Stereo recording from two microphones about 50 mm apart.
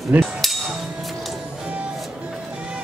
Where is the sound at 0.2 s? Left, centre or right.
Centre.